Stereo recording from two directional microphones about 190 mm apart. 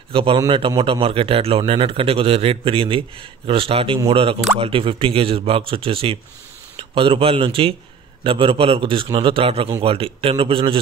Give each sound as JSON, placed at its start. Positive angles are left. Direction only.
{"t": 0.1, "sound": "a man's voice", "side_deg": -25}